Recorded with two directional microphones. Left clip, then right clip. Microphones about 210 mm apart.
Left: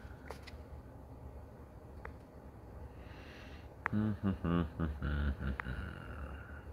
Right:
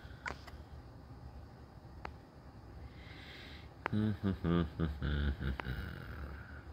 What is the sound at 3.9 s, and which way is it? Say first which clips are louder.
Speech: even; 10° right (ahead or behind).